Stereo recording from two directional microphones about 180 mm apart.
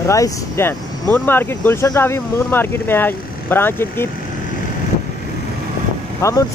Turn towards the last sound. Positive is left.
turn(degrees=15)  # may be behind; listen again after turning